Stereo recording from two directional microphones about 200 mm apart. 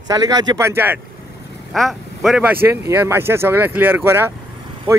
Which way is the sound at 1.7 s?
Centre (ahead or behind).